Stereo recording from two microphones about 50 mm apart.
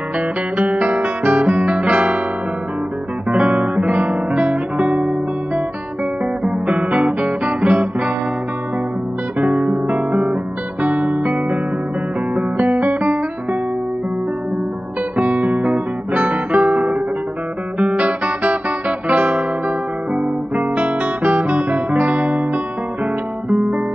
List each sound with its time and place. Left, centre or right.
0.6 s guitar: right
3.3 s guitar: right
6.4 s music: right
9.4 s guitar: right
12.4 s music: right
15.1 s guitar: right